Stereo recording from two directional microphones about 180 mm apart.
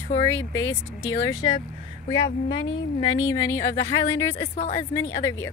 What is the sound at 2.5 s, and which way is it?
Speech, 90° left.